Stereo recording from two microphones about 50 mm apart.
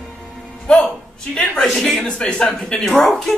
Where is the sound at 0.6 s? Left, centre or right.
Centre.